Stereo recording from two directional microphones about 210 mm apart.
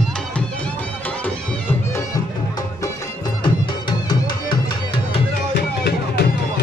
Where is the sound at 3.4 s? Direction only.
20° left (ahead or behind).